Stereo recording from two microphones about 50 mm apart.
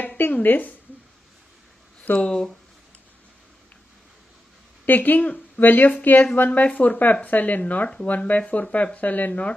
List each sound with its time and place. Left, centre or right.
0.2 s speech: left
2.1 s speech: centre
4.8 s speech: left
6.6 s speech: left